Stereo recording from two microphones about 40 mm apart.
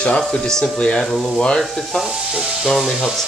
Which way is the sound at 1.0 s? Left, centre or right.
Centre.